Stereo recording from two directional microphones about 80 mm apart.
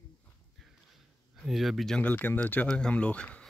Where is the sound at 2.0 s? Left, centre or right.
Left.